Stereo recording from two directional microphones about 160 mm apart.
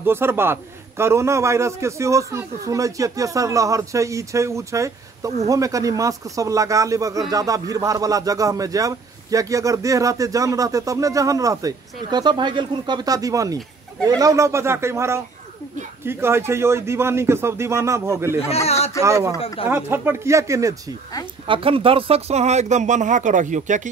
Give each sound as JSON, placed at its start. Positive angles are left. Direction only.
{"t": 0.0, "sound": "speech", "side_deg": -15}
{"t": 19.4, "sound": "speech", "side_deg": 35}
{"t": 19.7, "sound": "speech", "side_deg": -15}
{"t": 21.5, "sound": "speech", "side_deg": -35}